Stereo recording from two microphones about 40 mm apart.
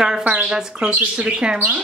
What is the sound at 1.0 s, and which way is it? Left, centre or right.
Speech, right.